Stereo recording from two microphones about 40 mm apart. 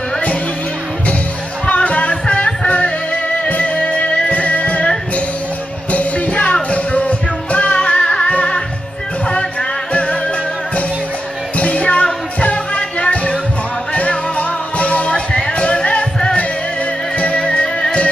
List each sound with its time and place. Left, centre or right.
1.7 s music: left
5.9 s music: left
11.5 s music: left
15.1 s music: centre
15.5 s music: left
17.4 s music: left